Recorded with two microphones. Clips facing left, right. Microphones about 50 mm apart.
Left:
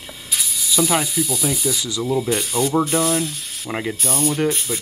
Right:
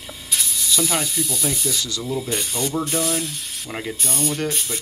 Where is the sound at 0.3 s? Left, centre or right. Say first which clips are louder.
Even; centre.